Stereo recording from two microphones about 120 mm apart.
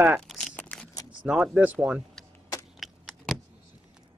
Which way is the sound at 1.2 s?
5° right (ahead or behind).